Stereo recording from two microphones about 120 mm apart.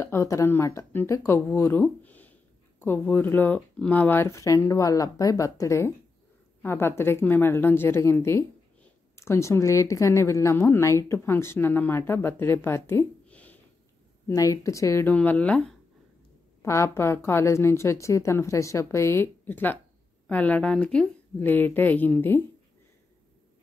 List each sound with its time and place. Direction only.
0.0 s speech: 20° left (ahead or behind)
13.3 s a sound: 10° left (ahead or behind)
14.2 s speech: 30° left (ahead or behind)
15.0 s a woman's voice: 15° left (ahead or behind)
16.6 s a woman's voice: 25° left (ahead or behind)